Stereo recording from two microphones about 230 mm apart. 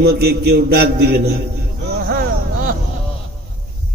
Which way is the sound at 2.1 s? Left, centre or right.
Right.